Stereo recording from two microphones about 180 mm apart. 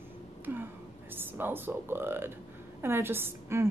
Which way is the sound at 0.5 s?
15° right (ahead or behind).